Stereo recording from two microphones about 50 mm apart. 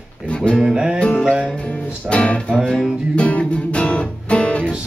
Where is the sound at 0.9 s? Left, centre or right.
Centre.